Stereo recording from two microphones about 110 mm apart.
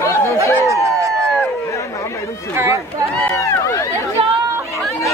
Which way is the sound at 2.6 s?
25° right (ahead or behind).